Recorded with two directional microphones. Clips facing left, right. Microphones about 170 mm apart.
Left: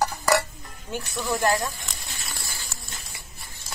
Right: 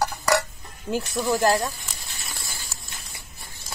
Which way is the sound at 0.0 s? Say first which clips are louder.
Even; centre (ahead or behind).